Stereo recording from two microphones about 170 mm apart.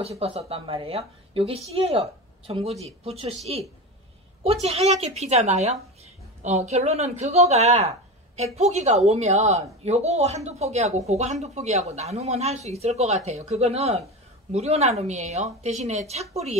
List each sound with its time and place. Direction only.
0.2 s speech: 35° right (ahead or behind)